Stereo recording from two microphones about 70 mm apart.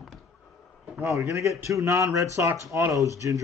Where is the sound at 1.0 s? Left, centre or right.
Right.